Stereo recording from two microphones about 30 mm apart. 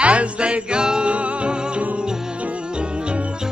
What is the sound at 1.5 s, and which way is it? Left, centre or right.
Music, right.